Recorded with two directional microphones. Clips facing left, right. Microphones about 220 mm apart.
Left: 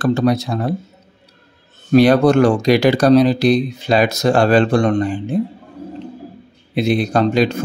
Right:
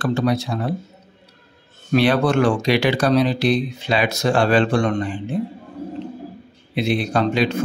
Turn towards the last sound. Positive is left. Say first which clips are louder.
# left 4 dB
turn(degrees=40)  # may be behind; listen again after turning